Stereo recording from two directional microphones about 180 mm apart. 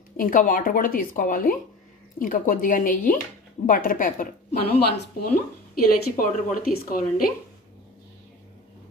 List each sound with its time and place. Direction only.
0.2 s speech: 50° left (ahead or behind); by 5.4 s 65° left (ahead or behind)
6.1 s speech: 55° left (ahead or behind)